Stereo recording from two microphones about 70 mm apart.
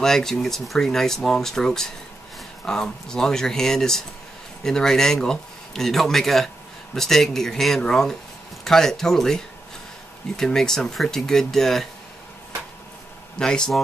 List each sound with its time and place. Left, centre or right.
0.0 s speech: centre
13.4 s speech: centre